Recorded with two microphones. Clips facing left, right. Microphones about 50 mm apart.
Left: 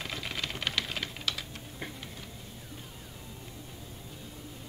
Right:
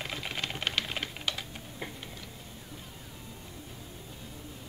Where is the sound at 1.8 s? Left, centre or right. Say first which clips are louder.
Right 1 dB; centre.